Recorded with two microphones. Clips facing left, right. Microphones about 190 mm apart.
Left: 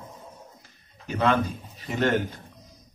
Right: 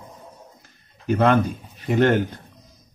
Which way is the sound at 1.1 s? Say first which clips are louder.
Right 5 dB; 55° right (ahead or behind).